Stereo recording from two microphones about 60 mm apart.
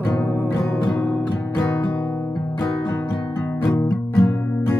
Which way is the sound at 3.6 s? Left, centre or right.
Left.